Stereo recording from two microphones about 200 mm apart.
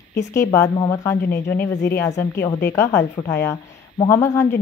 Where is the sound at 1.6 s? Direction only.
50° left (ahead or behind).